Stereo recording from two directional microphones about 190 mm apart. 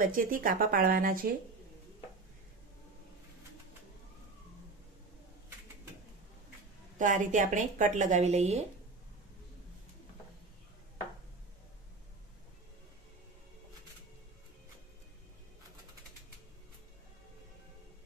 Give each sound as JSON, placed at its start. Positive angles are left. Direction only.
{"t": 0.0, "sound": "speech", "side_deg": -45}
{"t": 7.0, "sound": "speech", "side_deg": -45}